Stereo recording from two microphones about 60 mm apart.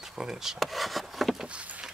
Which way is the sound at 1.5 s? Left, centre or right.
Right.